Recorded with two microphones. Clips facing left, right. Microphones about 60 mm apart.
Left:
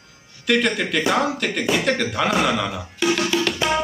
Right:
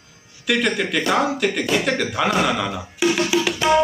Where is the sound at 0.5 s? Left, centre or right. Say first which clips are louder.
Even; centre.